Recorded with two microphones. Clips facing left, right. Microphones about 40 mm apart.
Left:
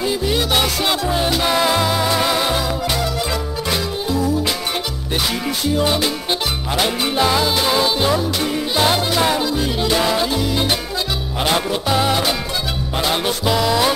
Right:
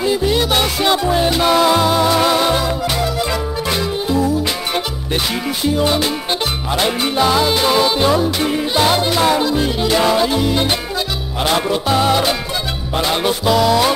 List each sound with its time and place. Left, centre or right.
0.3 s music: centre
5.8 s music: centre
11.4 s music: centre